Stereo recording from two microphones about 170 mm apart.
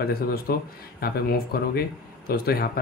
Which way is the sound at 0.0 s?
65° left (ahead or behind).